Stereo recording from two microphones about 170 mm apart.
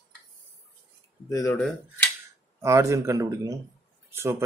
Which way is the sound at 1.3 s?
20° left (ahead or behind).